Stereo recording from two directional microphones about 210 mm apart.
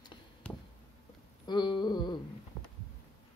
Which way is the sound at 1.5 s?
20° left (ahead or behind).